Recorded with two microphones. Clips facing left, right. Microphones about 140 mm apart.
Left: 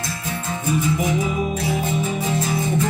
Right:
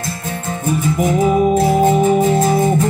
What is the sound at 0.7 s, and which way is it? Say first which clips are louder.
Music: right 4 dB; 50° right (ahead or behind).